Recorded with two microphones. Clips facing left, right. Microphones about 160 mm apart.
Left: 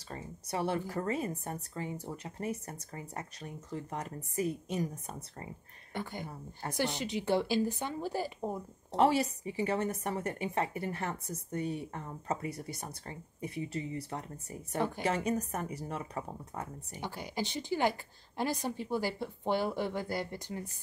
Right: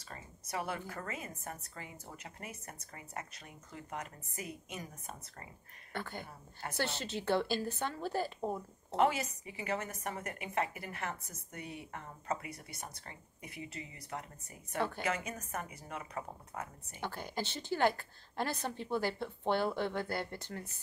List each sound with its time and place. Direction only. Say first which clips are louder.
0.1 s a woman's voice: left 4 dB; 30° left (ahead or behind)
5.9 s a woman's voice: left 3 dB; 15° left (ahead or behind)
8.9 s a woman's voice: left 4 dB; 35° left (ahead or behind)
14.8 s a woman's voice: left 2 dB; 15° left (ahead or behind)
15.0 s a woman's voice: left 6 dB; 35° left (ahead or behind)
17.0 s a woman's voice: left 2 dB; 15° left (ahead or behind)